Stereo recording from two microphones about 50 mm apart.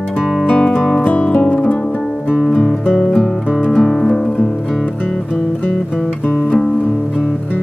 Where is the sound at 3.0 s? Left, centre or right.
Centre.